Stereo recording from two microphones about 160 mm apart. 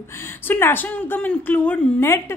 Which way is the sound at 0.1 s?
15° left (ahead or behind).